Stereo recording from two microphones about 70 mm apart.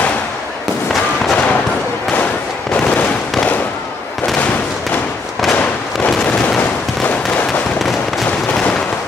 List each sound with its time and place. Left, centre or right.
1.3 s gunshot: centre
2.7 s fireworks: left
5.5 s fireworks: left